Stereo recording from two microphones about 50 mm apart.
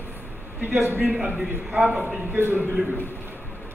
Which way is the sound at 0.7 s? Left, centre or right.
Right.